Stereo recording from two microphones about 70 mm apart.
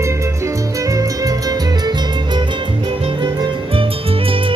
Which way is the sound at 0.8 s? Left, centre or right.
Right.